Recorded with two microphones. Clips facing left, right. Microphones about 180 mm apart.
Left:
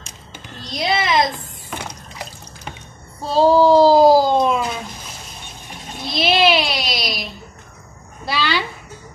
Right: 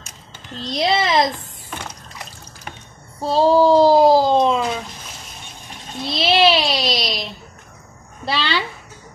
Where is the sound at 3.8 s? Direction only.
5° left (ahead or behind).